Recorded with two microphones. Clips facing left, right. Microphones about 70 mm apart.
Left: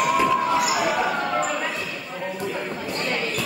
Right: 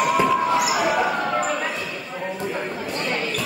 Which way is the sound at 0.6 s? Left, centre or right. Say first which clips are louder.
Right 1 dB; centre.